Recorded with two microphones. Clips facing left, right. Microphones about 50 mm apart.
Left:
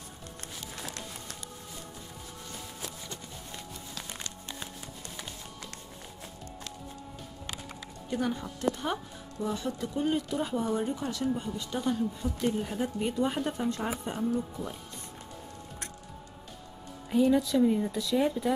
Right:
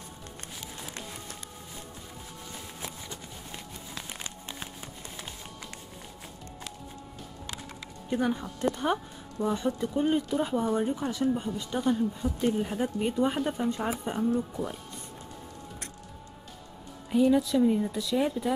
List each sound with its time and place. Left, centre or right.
0.6 s music: centre
2.8 s a sound: centre
8.1 s speech: centre
14.1 s speech: centre
14.6 s speech: centre
17.1 s speech: centre